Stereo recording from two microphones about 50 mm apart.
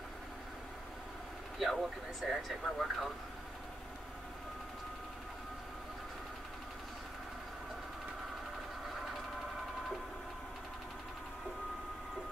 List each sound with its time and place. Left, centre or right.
1.6 s speech: centre